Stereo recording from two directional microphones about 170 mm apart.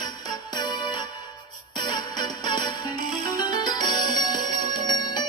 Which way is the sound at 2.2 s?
25° left (ahead or behind).